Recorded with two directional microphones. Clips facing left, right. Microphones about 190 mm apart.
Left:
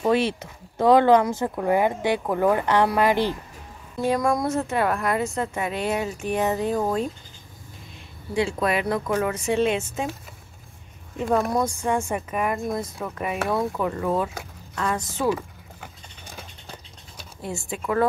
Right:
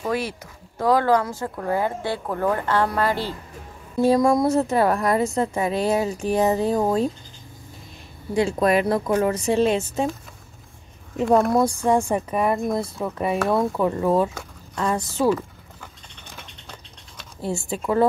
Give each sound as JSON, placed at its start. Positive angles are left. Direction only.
{"t": 0.0, "sound": "speech", "side_deg": 25}
{"t": 4.0, "sound": "a woman's voice", "side_deg": -30}
{"t": 8.4, "sound": "a woman's voice", "side_deg": -40}
{"t": 11.1, "sound": "a woman's voice", "side_deg": -35}
{"t": 17.4, "sound": "speech", "side_deg": -30}